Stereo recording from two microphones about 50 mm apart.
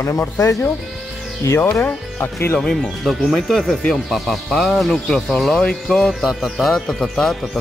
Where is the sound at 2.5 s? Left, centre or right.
Centre.